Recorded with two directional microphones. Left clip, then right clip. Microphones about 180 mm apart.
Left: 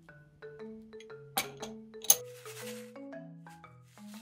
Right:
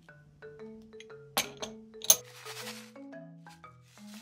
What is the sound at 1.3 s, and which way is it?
Music, 15° right (ahead or behind).